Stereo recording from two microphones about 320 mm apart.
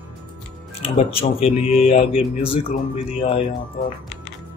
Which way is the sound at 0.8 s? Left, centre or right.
Centre.